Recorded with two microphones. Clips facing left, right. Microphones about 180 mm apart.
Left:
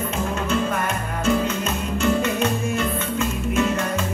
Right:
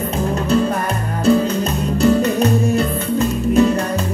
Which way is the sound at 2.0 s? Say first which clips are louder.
Right 7 dB; 35° right (ahead or behind).